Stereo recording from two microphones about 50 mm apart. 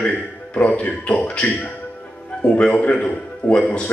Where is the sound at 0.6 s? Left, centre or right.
Left.